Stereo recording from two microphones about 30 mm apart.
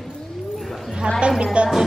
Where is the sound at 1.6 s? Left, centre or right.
Right.